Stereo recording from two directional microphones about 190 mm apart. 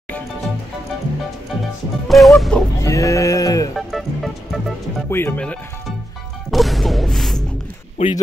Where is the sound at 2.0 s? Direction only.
Centre (ahead or behind).